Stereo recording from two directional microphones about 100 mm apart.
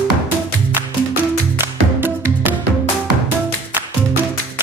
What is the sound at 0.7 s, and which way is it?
Music, 20° right (ahead or behind).